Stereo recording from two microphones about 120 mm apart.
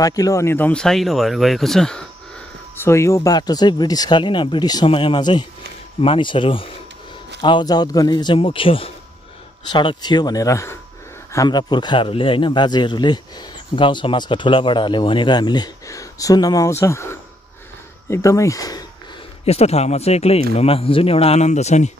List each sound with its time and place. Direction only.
0.0 s speech: 30° left (ahead or behind); by 2.0 s 5° left (ahead or behind)
2.7 s speech: 20° left (ahead or behind)
4.8 s speech: 50° left (ahead or behind)
8.4 s speech: 45° left (ahead or behind)
9.7 s speech: 40° left (ahead or behind)
11.3 s speech: 35° left (ahead or behind)
19.4 s speech: 60° left (ahead or behind)